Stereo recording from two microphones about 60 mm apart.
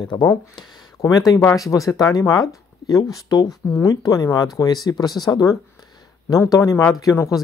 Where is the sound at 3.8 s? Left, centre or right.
Left.